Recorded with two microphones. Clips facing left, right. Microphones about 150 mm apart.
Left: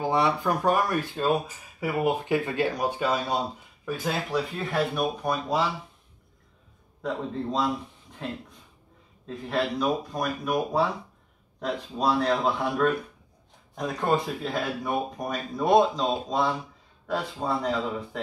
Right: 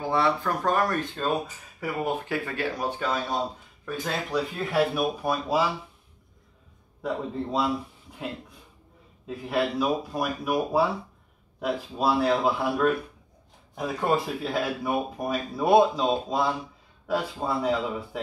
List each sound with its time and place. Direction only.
0.0 s speech: 15° left (ahead or behind); by 5.7 s 5° right (ahead or behind)
7.0 s speech: 5° right (ahead or behind)
9.2 s speech: 5° right (ahead or behind)